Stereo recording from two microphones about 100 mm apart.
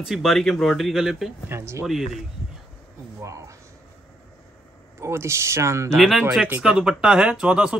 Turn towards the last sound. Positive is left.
turn(degrees=-10)  # may be behind; listen again after turning